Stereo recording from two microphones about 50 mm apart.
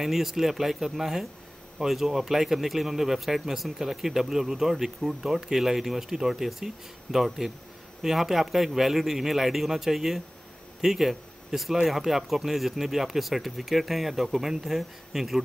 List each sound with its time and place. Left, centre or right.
0.0 s speech: centre